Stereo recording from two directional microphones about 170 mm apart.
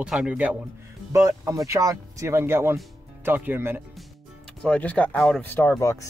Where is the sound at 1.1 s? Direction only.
20° right (ahead or behind).